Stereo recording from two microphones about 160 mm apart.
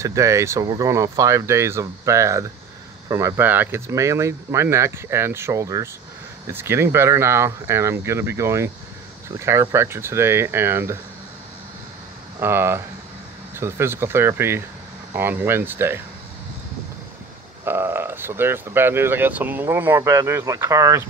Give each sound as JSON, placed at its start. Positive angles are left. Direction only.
{"t": 0.0, "sound": "speech", "side_deg": -20}
{"t": 12.4, "sound": "speech", "side_deg": -15}
{"t": 17.6, "sound": "speech", "side_deg": -15}